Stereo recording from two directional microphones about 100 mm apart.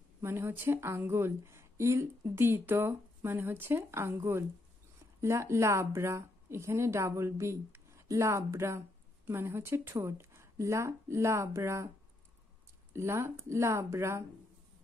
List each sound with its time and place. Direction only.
0.2 s speech: 25° right (ahead or behind)
12.9 s speech: 25° right (ahead or behind)